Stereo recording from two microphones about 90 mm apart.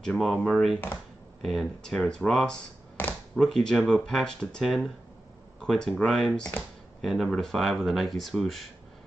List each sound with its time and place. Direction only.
0.0 s speech: centre (ahead or behind)
3.0 s a sound: 20° left (ahead or behind)
3.3 s speech: 5° left (ahead or behind)